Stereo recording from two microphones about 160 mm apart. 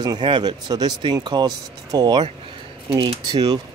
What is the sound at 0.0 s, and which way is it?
Speech, 30° right (ahead or behind).